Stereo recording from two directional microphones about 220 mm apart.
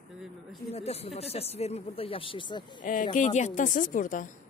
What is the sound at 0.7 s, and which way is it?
A woman's voice, 30° left (ahead or behind).